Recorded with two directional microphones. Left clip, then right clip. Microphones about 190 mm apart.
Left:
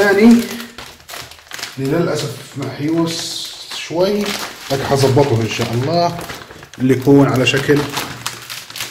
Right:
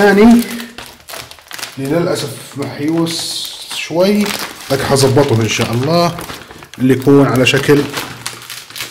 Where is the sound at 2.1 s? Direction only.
50° right (ahead or behind).